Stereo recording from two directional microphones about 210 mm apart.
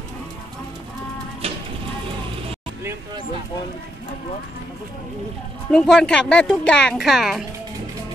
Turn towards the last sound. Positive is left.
turn(degrees=0)  # may be behind; listen again after turning